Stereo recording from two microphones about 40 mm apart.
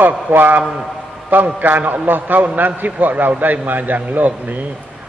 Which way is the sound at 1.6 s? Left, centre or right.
Right.